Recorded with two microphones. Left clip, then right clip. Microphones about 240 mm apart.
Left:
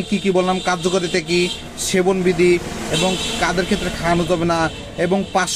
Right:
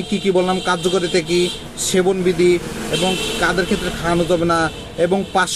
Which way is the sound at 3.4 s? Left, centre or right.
Left.